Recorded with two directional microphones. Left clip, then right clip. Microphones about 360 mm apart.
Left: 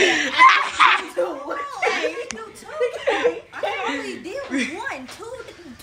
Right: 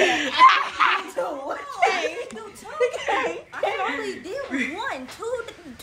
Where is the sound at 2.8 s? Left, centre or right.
Right.